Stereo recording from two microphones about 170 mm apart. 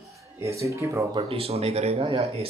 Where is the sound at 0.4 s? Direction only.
15° right (ahead or behind).